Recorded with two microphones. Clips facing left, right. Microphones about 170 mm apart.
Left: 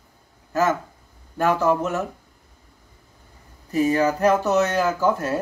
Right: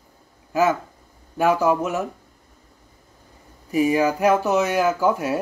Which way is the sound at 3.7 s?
10° right (ahead or behind).